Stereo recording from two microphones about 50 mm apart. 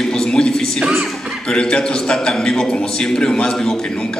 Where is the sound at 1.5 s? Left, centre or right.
Centre.